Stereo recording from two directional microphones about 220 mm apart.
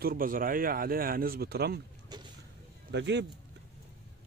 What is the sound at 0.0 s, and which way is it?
Speech, 40° right (ahead or behind).